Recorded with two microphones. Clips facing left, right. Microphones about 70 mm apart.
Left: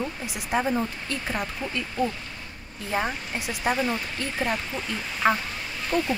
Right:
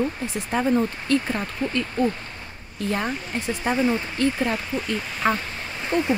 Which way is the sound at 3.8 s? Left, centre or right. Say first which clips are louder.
Right 5 dB; right.